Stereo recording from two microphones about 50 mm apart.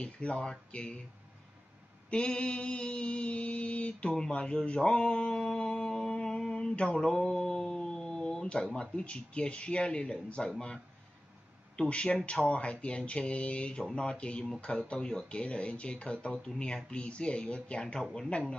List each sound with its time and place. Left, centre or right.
0.0 s speech: left
2.0 s speech: left
11.9 s speech: left